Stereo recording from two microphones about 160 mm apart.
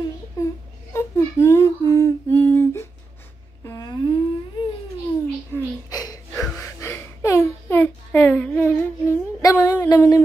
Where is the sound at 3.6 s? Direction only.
20° left (ahead or behind).